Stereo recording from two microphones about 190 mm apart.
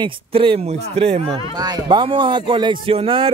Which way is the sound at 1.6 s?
20° right (ahead or behind).